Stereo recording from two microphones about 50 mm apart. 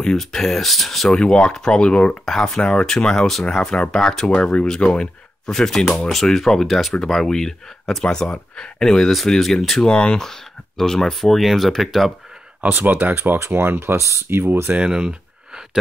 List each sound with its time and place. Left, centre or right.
0.0 s speech: centre
1.1 s speech: centre
2.2 s speech: centre
4.3 s speech: left
4.6 s speech: centre
8.0 s speech: centre
9.8 s speech: left
10.8 s speech: centre
12.6 s speech: right
14.8 s a sound: centre